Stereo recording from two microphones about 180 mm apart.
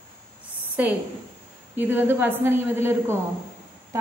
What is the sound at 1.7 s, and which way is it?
A woman's voice, 10° right (ahead or behind).